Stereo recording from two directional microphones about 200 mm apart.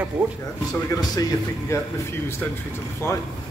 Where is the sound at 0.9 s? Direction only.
15° left (ahead or behind).